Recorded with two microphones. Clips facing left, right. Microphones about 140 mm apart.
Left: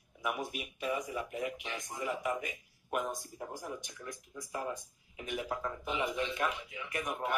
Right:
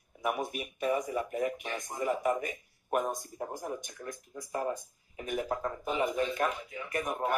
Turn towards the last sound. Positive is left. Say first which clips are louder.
# right 4 dB
turn(degrees=-40)  # may be behind; listen again after turning